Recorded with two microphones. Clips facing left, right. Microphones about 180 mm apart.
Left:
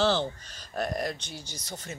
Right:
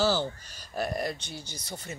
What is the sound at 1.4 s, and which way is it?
Speech, 55° right (ahead or behind).